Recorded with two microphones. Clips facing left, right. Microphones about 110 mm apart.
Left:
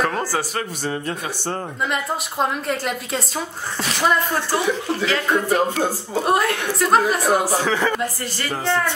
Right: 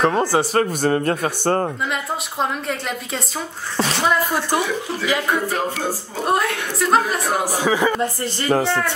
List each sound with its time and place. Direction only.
0.0 s speech: 20° right (ahead or behind)
0.6 s a man's voice: 55° right (ahead or behind)
1.9 s a woman's voice: centre (ahead or behind)
4.3 s a woman's voice: 15° right (ahead or behind)
6.2 s a woman's voice: centre (ahead or behind)
7.5 s a woman's voice: 10° right (ahead or behind)
8.0 s speech: 25° right (ahead or behind)